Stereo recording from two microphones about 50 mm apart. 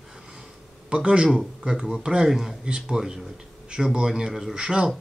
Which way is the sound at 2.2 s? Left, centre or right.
Centre.